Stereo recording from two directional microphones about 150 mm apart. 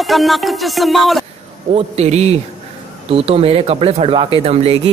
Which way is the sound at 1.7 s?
45° right (ahead or behind).